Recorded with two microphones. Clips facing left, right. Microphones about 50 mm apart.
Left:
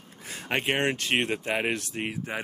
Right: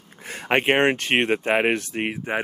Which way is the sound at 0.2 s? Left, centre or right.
Right.